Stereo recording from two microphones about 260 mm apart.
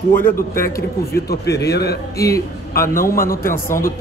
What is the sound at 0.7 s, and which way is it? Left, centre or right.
Speech, left.